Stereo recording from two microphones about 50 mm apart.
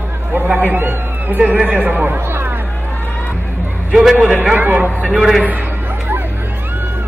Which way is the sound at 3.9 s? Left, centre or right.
Centre.